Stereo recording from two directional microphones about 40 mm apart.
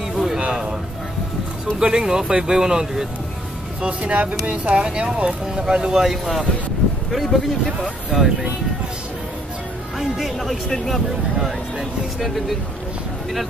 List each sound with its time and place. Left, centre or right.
0.1 s a sound: centre
1.8 s speech: right
4.0 s speech: right
6.0 s a man's voice: centre
9.9 s speech: centre